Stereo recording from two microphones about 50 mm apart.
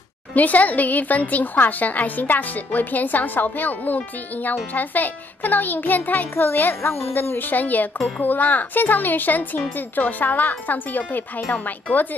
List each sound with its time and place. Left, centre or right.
0.3 s a woman's voice: left
6.3 s a child's voice: left